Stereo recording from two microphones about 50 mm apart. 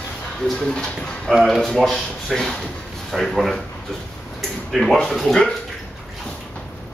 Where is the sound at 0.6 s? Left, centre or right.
Centre.